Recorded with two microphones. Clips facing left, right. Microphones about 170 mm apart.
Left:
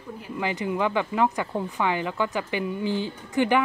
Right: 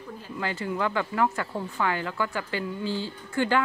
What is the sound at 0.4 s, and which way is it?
Speech, 15° left (ahead or behind).